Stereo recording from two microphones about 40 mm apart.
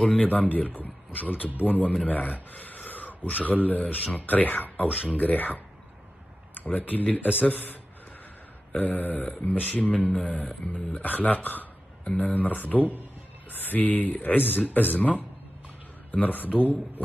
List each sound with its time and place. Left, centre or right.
0.2 s speech: left
8.7 s speech: left
9.7 s a sound: left
11.0 s speech: left
15.0 s a sound: left
16.1 s speech: left